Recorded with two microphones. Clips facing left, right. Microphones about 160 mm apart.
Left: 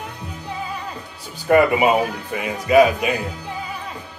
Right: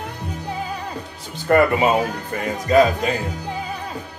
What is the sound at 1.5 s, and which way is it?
Speech, 15° left (ahead or behind).